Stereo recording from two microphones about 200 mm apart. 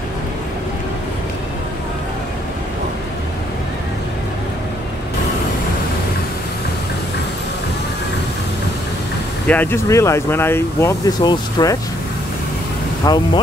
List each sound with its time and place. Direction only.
9.5 s speech: 10° left (ahead or behind)
13.0 s speech: 20° left (ahead or behind)